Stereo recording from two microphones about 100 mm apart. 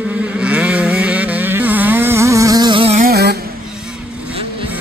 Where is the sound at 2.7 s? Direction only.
70° right (ahead or behind).